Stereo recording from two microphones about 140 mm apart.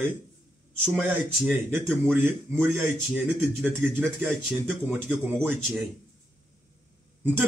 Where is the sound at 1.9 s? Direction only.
5° left (ahead or behind).